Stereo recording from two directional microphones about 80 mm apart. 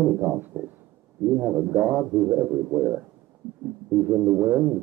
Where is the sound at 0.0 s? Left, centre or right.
Centre.